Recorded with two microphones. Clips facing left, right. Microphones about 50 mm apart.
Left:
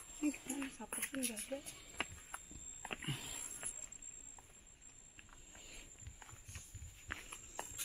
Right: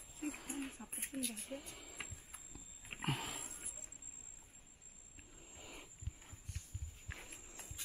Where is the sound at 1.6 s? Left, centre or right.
Right.